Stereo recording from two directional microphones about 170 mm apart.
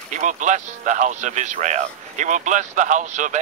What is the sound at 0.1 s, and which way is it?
Speech, 45° right (ahead or behind).